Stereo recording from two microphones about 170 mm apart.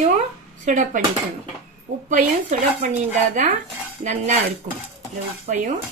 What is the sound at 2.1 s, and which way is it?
Speech, 45° right (ahead or behind).